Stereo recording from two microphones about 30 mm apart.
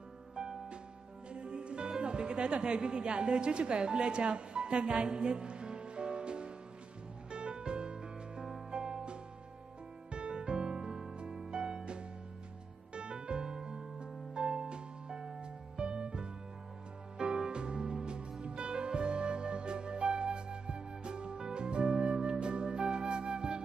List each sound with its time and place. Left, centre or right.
0.4 s music: right
2.0 s a woman's voice: right
7.2 s music: right